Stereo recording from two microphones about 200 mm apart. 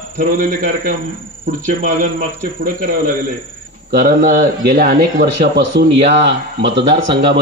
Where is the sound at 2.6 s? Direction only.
45° right (ahead or behind).